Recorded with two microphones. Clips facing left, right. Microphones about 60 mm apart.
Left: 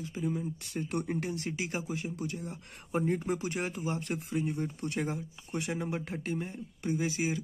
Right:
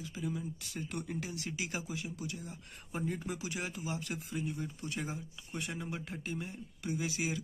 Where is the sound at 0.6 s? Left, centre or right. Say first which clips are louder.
Left 6 dB; left.